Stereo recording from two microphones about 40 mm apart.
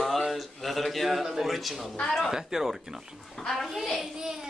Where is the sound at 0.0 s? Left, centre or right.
Centre.